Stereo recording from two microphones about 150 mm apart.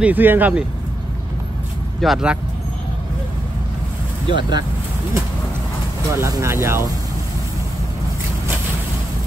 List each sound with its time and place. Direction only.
0.0 s speech: 10° right (ahead or behind)
2.0 s speech: centre (ahead or behind)
4.3 s speech: 30° right (ahead or behind)
6.0 s speech: 20° right (ahead or behind)